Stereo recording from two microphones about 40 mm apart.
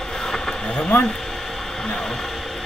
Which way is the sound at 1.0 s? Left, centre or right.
Centre.